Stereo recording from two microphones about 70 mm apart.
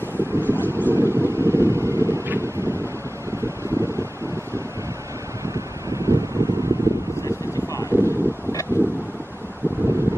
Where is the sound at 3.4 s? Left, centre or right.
Right.